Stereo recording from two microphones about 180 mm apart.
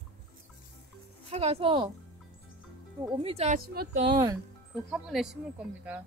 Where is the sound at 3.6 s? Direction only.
60° right (ahead or behind).